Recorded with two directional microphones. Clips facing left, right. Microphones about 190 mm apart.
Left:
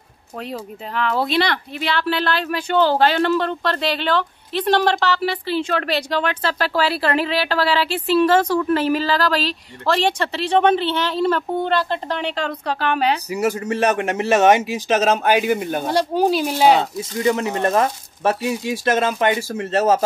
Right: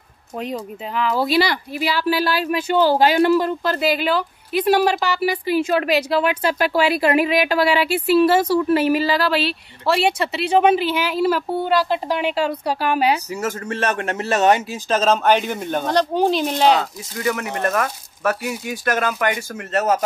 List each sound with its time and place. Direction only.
0.9 s speech: centre (ahead or behind)
13.3 s a man's voice: 15° left (ahead or behind)
17.2 s speech: 25° left (ahead or behind)